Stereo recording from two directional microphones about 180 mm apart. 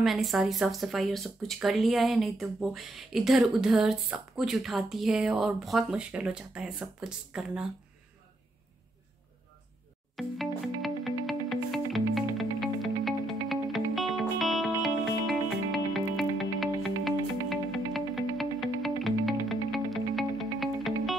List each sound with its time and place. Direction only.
0.0 s speech: centre (ahead or behind)
10.1 s music: centre (ahead or behind)